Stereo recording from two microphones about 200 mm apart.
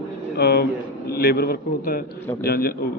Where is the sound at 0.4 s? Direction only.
55° left (ahead or behind).